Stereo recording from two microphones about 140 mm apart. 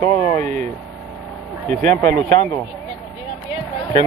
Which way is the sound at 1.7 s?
70° right (ahead or behind).